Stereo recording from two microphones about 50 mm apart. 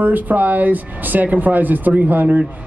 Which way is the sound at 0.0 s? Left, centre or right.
Right.